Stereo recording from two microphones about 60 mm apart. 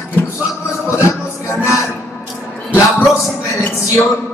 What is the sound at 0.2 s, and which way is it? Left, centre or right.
Music, left.